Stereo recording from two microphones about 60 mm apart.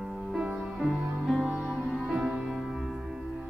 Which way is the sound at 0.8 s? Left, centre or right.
Centre.